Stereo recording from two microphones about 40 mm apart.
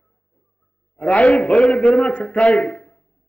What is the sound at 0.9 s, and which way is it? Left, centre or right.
A man's voice, left.